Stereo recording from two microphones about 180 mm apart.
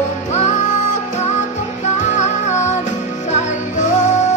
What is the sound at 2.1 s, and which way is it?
Music, 40° left (ahead or behind).